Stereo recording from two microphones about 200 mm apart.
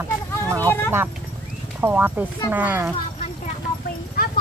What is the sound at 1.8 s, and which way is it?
Speech, 10° right (ahead or behind).